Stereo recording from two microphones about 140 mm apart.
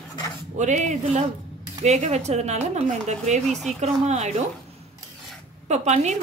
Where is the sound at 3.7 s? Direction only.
55° right (ahead or behind).